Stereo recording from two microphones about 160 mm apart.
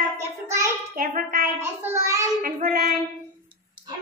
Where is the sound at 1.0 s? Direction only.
55° right (ahead or behind).